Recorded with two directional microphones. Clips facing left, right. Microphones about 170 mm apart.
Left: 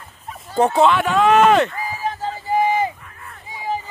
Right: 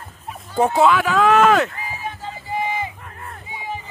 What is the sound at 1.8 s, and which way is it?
Crowd, 40° left (ahead or behind).